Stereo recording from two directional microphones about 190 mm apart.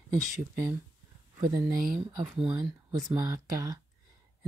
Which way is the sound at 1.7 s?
45° right (ahead or behind).